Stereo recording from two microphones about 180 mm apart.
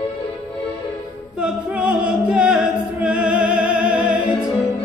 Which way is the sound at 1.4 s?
5° right (ahead or behind).